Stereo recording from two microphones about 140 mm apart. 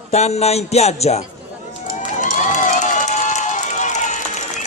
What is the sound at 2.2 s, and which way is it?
Run, 65° left (ahead or behind).